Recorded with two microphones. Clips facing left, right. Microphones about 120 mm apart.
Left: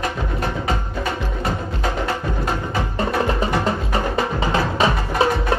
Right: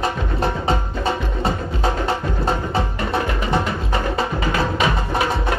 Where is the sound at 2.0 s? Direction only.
30° right (ahead or behind).